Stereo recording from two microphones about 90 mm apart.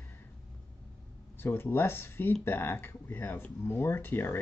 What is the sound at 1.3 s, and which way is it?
Speech, 25° left (ahead or behind).